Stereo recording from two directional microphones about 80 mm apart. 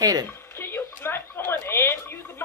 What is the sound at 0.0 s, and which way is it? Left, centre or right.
Speech, right.